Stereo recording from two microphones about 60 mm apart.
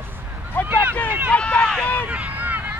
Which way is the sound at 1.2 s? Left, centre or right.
Centre.